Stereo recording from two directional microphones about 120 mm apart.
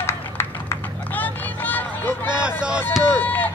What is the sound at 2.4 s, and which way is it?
Music, 10° right (ahead or behind).